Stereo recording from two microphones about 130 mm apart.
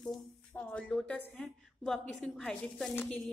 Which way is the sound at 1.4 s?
5° left (ahead or behind).